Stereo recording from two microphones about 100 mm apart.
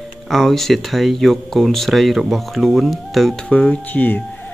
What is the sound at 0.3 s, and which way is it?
Speech, 5° left (ahead or behind).